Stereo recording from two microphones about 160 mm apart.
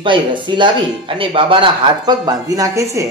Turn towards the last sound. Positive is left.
turn(degrees=-20)  # may be behind; listen again after turning